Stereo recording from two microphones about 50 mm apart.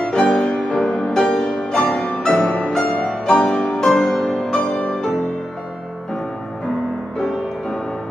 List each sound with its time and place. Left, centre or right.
0.0 s music: centre
3.8 s music: centre
7.2 s music: centre